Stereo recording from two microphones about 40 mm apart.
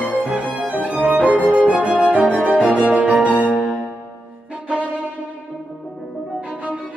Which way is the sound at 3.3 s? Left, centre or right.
Left.